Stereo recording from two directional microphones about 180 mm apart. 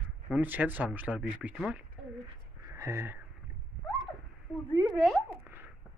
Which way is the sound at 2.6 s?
15° right (ahead or behind).